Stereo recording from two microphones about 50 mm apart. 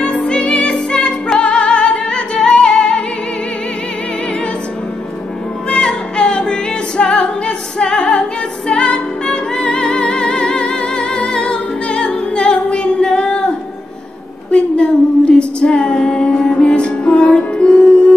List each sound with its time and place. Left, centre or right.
0.3 s music: left
5.7 s music: centre
14.5 s female singing: centre
17.1 s music: left